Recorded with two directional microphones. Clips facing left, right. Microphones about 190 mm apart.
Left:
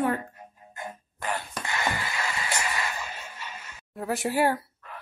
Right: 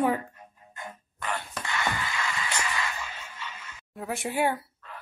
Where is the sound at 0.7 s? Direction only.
35° left (ahead or behind).